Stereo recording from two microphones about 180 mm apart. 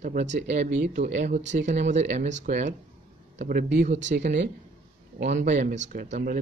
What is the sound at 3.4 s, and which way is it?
Speech, 55° right (ahead or behind).